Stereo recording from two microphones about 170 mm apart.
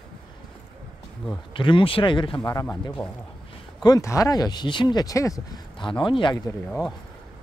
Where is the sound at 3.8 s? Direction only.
20° left (ahead or behind).